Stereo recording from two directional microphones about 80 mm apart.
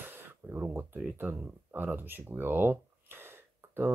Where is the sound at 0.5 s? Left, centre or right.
Right.